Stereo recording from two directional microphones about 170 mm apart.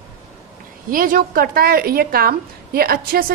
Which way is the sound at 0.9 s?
55° right (ahead or behind).